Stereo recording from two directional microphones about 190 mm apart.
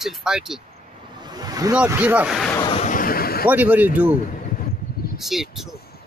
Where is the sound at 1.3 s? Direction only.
20° right (ahead or behind).